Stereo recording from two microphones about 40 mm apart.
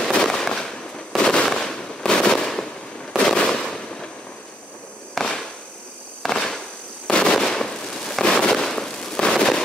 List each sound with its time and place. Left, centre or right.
0.2 s fireworks: centre
1.2 s fireworks: left
1.5 s fireworks: centre
2.0 s fireworks: left
5.2 s a sound: centre
7.1 s fireworks: left
7.3 s fireworks: centre